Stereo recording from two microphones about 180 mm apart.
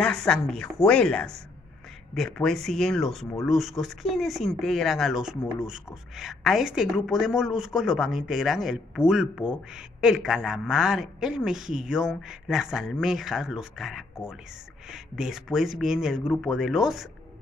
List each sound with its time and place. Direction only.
0.0 s a woman's voice: 5° left (ahead or behind)